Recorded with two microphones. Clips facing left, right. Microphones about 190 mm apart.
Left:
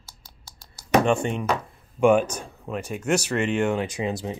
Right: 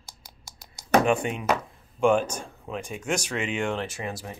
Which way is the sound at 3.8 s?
20° left (ahead or behind).